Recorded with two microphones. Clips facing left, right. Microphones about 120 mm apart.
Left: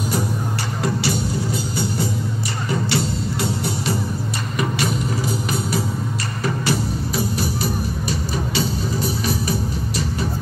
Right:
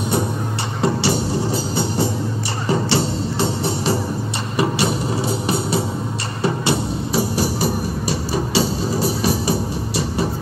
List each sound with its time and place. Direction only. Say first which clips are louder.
0.8 s music: right 4 dB; 30° right (ahead or behind)